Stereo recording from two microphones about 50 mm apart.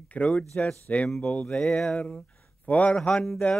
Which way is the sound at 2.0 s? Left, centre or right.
Left.